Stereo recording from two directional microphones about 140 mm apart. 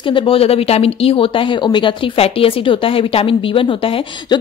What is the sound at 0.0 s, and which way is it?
Speech, 40° left (ahead or behind).